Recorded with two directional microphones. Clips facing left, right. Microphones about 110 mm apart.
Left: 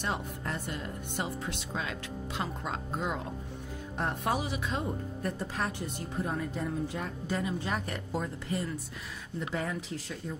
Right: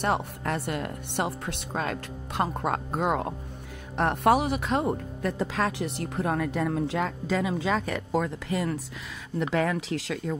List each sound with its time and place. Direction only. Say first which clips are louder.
0.0 s speech: right 7 dB; 65° right (ahead or behind); by 10.3 s 90° right